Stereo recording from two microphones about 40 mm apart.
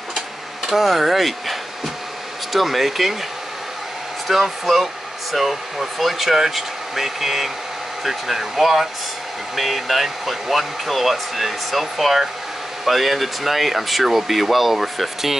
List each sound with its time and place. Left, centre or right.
0.7 s speech: centre
4.3 s speech: centre